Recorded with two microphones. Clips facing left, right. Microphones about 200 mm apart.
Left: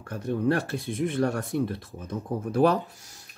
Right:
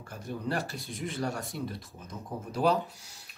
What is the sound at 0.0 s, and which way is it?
Speech, 65° left (ahead or behind).